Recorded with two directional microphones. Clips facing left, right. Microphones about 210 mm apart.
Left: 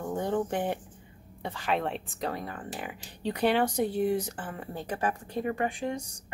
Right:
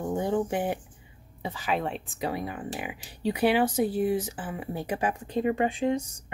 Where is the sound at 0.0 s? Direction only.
10° right (ahead or behind).